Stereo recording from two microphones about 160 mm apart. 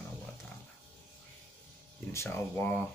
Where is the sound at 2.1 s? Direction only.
15° left (ahead or behind).